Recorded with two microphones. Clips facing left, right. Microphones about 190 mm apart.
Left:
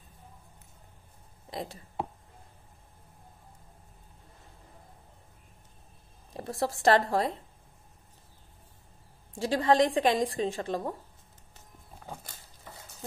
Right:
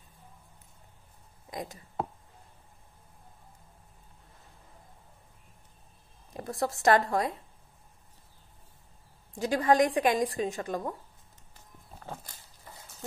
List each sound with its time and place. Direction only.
1.5 s speech: 30° left (ahead or behind)
6.3 s a woman's voice: 30° left (ahead or behind)
9.3 s a woman's voice: 30° left (ahead or behind)